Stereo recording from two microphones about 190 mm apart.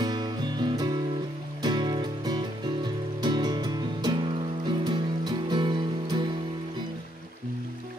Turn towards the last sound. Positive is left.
turn(degrees=-25)  # may be behind; listen again after turning